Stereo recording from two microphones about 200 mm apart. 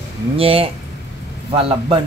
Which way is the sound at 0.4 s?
30° right (ahead or behind).